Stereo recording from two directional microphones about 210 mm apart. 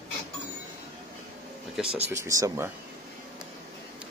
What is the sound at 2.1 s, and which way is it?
Speech, 15° right (ahead or behind).